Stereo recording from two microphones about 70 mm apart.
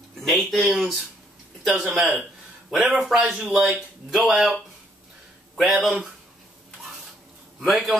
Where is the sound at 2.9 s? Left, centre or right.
Centre.